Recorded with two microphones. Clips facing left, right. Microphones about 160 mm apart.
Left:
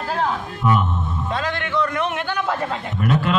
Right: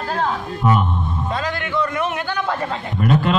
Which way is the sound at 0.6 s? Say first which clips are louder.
Right 1 dB; 25° right (ahead or behind).